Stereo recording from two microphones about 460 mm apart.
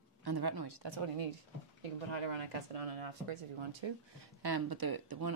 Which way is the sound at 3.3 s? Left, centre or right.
Right.